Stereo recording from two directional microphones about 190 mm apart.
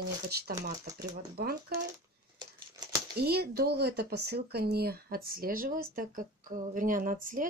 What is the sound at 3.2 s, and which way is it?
Speech, 55° right (ahead or behind).